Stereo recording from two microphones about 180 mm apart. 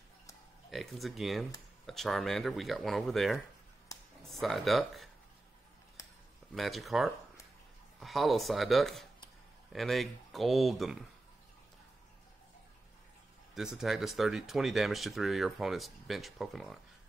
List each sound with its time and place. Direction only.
0.7 s speech: centre (ahead or behind)
6.5 s speech: centre (ahead or behind)
13.6 s speech: 5° right (ahead or behind)